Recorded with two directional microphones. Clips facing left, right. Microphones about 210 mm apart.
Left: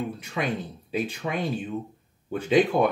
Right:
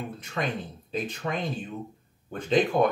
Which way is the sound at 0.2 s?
10° left (ahead or behind).